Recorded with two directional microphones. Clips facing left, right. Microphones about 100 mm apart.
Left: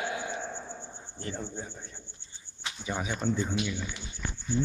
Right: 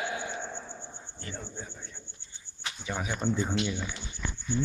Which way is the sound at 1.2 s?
35° left (ahead or behind).